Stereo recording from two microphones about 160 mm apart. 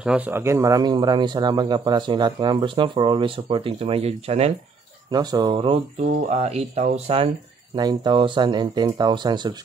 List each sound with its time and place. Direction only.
0.0 s speech: 10° right (ahead or behind); by 4.5 s 40° right (ahead or behind)
5.1 s speech: 25° right (ahead or behind); by 7.2 s 40° right (ahead or behind)
7.7 s speech: 25° right (ahead or behind)